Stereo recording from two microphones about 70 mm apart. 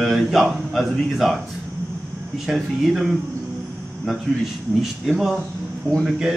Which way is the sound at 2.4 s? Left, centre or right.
Centre.